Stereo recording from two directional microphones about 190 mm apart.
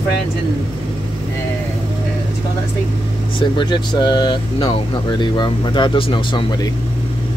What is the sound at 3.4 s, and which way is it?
Speech, 25° left (ahead or behind).